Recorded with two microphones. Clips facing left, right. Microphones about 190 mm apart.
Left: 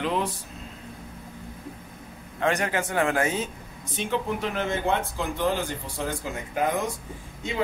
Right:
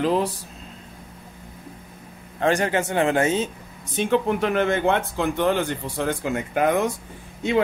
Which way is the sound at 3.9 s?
60° right (ahead or behind).